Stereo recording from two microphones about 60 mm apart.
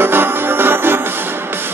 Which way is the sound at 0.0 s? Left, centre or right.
Right.